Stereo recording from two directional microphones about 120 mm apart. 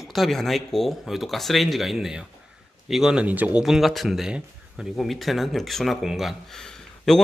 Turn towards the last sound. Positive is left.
turn(degrees=5)  # may be behind; listen again after turning